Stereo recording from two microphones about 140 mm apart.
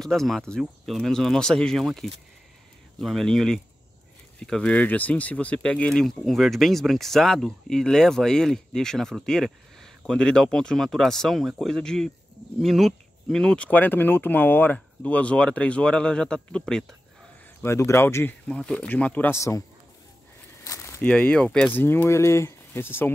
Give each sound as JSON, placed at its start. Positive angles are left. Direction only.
{"t": 0.0, "sound": "speech", "side_deg": 0}
{"t": 17.6, "sound": "speech", "side_deg": 20}
{"t": 20.6, "sound": "a sound", "side_deg": 20}
{"t": 21.0, "sound": "speech", "side_deg": 10}